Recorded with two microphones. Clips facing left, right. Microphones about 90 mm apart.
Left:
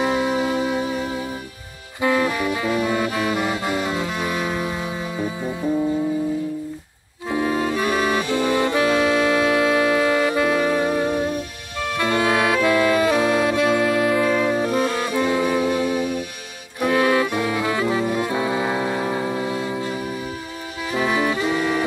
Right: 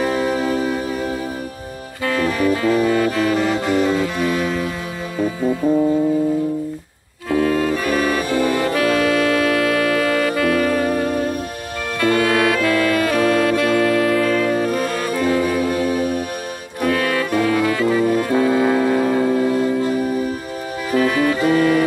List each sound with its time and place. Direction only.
0.0 s music: 15° left (ahead or behind)
2.0 s saxophone: 20° left (ahead or behind)
3.6 s music: 20° left (ahead or behind)
7.2 s music: 20° left (ahead or behind)
12.0 s saxophone: 20° left (ahead or behind)
15.7 s music: 45° right (ahead or behind)
16.8 s saxophone: 20° left (ahead or behind)
20.9 s music: 15° left (ahead or behind)